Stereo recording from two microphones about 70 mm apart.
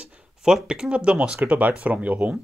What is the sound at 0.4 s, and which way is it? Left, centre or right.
Speech, centre.